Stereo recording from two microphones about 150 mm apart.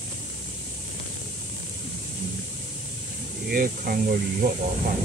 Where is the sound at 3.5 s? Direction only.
80° right.